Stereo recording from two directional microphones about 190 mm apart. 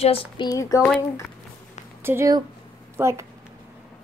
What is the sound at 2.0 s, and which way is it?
Speech, 15° right (ahead or behind).